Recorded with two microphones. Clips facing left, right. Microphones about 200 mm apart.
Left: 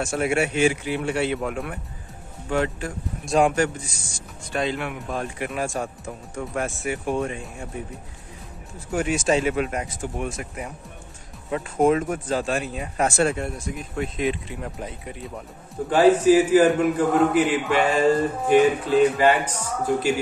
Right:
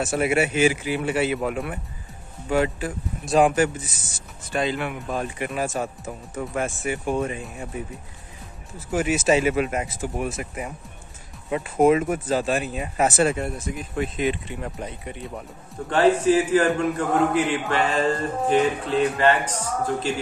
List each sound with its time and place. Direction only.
0.0 s speech: 5° right (ahead or behind)
8.7 s speech: 5° right (ahead or behind)